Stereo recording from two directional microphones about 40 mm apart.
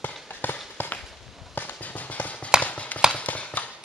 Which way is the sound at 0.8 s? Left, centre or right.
Left.